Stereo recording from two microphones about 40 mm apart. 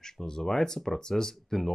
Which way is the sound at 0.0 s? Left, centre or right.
Centre.